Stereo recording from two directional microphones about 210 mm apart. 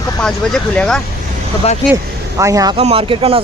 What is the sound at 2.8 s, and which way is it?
Speech, 30° right (ahead or behind).